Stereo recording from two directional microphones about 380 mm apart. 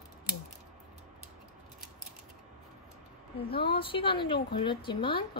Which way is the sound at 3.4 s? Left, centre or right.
Centre.